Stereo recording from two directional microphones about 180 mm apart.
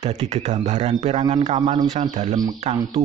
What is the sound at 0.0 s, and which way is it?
Speech, 40° right (ahead or behind).